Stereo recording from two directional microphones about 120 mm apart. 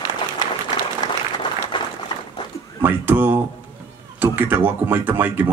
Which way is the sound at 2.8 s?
15° right (ahead or behind).